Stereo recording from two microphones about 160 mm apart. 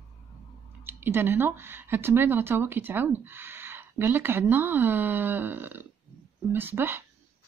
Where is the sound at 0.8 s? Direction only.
15° right (ahead or behind).